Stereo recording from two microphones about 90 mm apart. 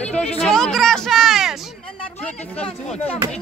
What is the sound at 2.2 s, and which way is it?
Speech, 10° left (ahead or behind).